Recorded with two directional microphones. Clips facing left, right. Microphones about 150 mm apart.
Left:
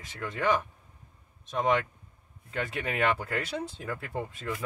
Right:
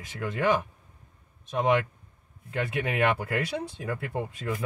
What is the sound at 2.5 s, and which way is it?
Speech, 5° right (ahead or behind).